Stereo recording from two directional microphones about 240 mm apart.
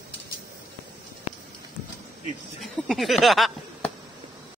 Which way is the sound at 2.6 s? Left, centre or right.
Centre.